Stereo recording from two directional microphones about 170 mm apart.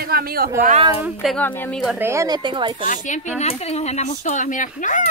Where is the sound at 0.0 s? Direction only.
60° right (ahead or behind).